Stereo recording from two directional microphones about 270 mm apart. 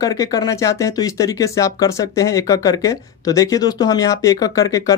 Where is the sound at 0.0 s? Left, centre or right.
Centre.